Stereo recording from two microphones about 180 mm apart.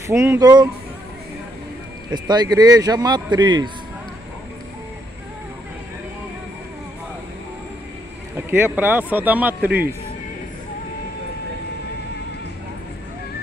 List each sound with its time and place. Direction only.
0.0 s speech: 15° right (ahead or behind)
2.1 s speech: 25° right (ahead or behind)
8.4 s speech: 10° right (ahead or behind)